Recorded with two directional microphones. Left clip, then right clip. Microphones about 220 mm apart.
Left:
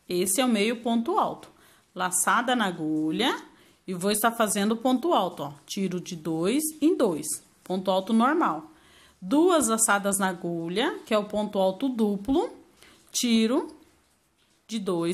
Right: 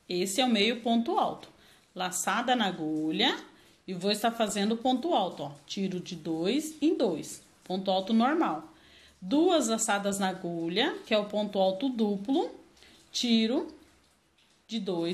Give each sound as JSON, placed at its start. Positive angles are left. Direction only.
{"t": 0.1, "sound": "speech", "side_deg": 25}
{"t": 14.7, "sound": "speech", "side_deg": 35}